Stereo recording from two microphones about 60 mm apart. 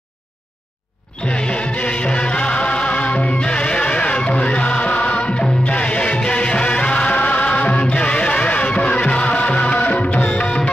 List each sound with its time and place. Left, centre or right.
1.2 s music: centre